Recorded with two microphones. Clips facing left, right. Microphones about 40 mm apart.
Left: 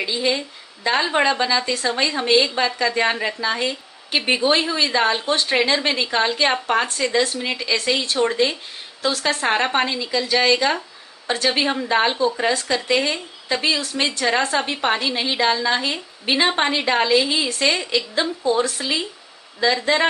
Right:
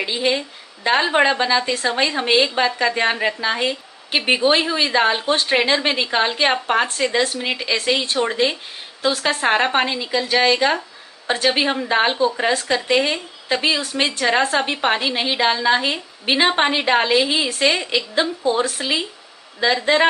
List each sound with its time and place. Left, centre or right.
0.0 s a woman's voice: right